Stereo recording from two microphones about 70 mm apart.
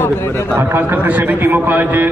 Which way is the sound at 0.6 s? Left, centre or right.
Right.